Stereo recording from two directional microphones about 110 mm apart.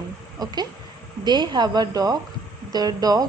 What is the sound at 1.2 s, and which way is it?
A woman's voice, 40° right (ahead or behind).